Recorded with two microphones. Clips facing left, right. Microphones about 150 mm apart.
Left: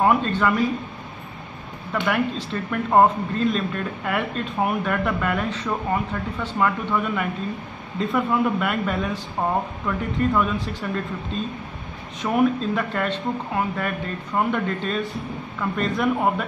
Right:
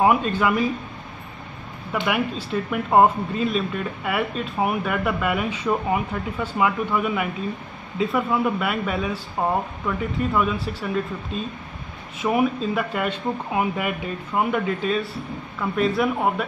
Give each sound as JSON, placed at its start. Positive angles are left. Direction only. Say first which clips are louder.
{"t": 0.0, "sound": "speech", "louder": "even", "side_deg": -10}
{"t": 1.9, "sound": "speech", "louder": "left 1 dB", "side_deg": -10}